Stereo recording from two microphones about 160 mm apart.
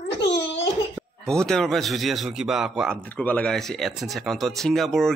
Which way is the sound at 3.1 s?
10° left (ahead or behind).